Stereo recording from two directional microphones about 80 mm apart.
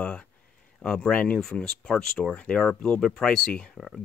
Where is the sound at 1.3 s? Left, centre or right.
Centre.